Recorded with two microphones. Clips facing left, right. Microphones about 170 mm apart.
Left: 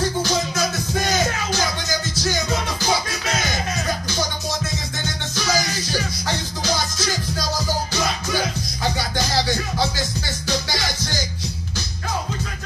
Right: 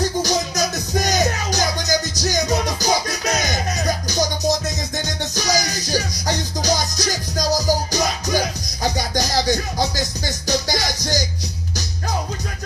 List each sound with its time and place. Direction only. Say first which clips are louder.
0.2 s music: right 1 dB; 40° right (ahead or behind)